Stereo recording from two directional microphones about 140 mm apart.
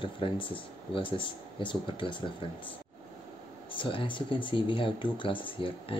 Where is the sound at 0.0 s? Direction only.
35° left (ahead or behind).